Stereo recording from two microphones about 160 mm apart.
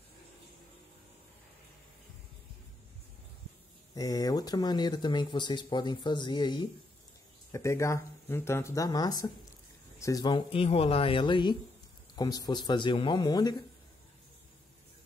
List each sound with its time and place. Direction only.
3.9 s speech: 25° left (ahead or behind)
7.5 s speech: 20° left (ahead or behind)